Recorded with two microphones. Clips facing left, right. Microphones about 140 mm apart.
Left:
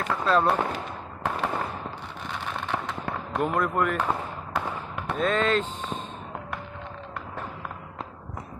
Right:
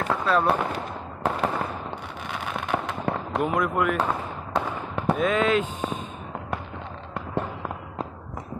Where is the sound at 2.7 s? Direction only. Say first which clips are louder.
Right 6 dB; 10° right (ahead or behind).